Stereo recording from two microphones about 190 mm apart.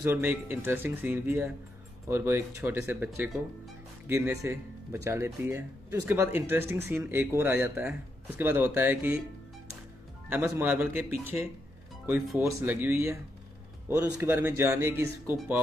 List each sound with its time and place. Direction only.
0.0 s speech: 10° right (ahead or behind)
10.3 s speech: 10° right (ahead or behind)